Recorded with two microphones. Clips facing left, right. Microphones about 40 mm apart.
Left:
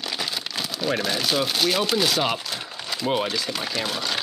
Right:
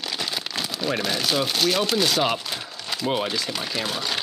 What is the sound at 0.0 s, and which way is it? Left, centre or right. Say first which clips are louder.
Speech: even; centre.